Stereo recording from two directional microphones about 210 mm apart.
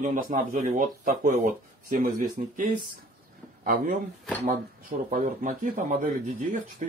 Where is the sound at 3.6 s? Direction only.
40° right (ahead or behind).